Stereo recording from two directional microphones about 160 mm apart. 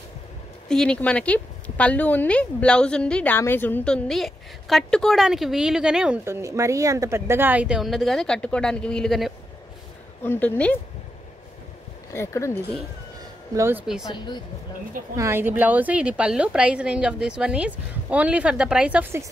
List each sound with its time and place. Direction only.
0.7 s speech: 5° left (ahead or behind)
10.2 s speech: 15° left (ahead or behind)
12.1 s speech: 15° left (ahead or behind)
13.6 s a woman's voice: 15° right (ahead or behind)
14.0 s speech: 25° left (ahead or behind)
15.1 s a woman's voice: 15° right (ahead or behind)